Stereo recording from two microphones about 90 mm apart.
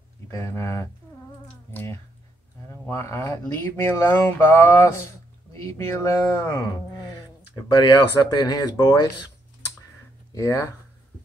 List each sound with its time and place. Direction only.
0.3 s speech: 35° left (ahead or behind)
7.6 s speech: 50° left (ahead or behind)
10.3 s speech: 40° left (ahead or behind)